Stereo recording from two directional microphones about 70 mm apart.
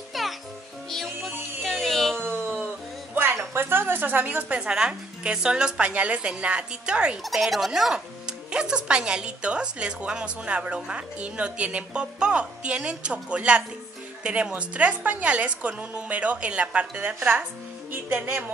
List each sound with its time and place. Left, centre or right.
0.1 s music: centre
2.1 s a sound: right
3.2 s speech: right; by 7.2 s centre
7.2 s a woman's voice: centre; by 18.4 s right